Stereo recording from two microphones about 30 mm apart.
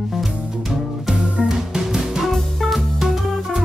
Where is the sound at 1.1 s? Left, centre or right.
Right.